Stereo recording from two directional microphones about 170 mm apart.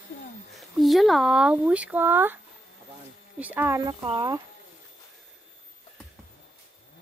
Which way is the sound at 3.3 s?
10° right (ahead or behind).